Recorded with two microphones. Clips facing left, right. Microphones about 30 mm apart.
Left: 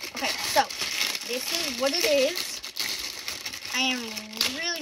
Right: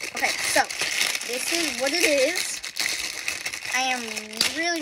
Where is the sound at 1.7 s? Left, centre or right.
Right.